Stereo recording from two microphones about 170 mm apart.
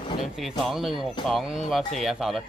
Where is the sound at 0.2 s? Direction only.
Centre (ahead or behind).